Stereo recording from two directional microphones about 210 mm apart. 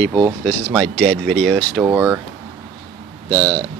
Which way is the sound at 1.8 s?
10° right (ahead or behind).